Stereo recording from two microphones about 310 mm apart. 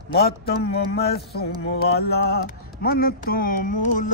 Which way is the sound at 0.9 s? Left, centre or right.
Left.